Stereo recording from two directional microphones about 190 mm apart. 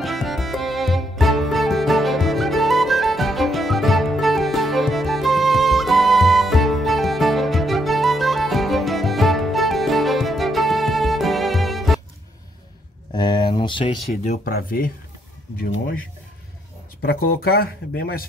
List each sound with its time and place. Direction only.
0.0 s music: centre (ahead or behind)
13.1 s a sound: 25° left (ahead or behind)
14.4 s speech: 55° left (ahead or behind)
17.0 s speech: 50° left (ahead or behind)